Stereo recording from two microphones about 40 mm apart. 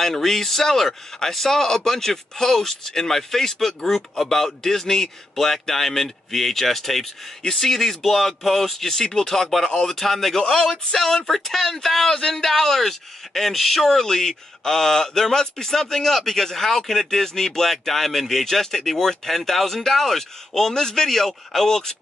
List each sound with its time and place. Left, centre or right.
0.0 s speech: centre
10.4 s speech: centre